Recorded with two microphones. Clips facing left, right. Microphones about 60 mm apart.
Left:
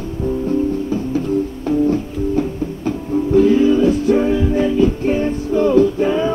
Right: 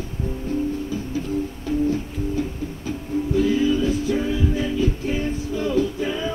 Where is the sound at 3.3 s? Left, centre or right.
Left.